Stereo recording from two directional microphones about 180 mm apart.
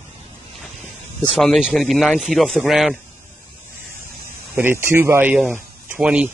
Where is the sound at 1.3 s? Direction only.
Centre (ahead or behind).